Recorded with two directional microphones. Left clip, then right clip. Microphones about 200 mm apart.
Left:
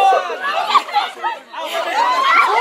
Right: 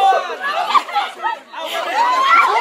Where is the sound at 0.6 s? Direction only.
15° left (ahead or behind).